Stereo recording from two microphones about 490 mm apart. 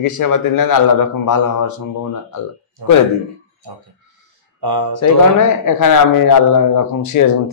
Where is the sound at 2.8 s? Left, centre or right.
Right.